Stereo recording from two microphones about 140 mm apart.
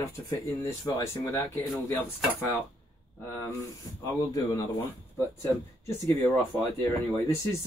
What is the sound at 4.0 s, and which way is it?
Speech, 25° left (ahead or behind).